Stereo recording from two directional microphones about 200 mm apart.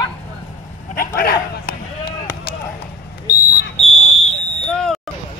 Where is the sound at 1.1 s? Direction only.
50° left (ahead or behind).